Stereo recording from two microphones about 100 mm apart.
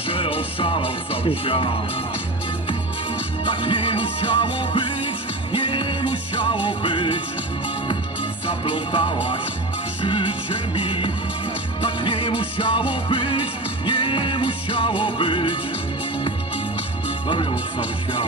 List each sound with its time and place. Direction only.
0.1 s music: 65° left (ahead or behind)
3.4 s music: 55° left (ahead or behind)
8.5 s music: 55° left (ahead or behind)
17.3 s music: 55° left (ahead or behind)